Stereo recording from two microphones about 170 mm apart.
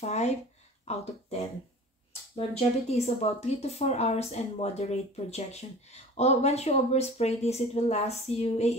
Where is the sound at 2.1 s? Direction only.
35° left (ahead or behind).